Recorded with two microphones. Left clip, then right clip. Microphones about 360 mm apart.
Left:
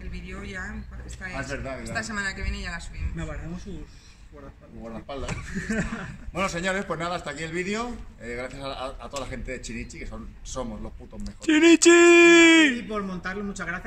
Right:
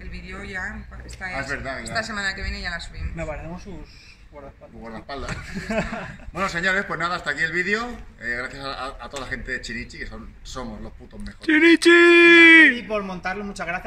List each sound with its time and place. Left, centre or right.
0.3 s speech: centre
5.5 s speech: right
6.3 s a man's voice: centre
11.2 s speech: centre